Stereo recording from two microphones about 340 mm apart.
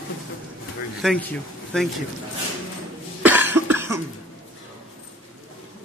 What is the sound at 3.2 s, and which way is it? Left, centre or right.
Cough, centre.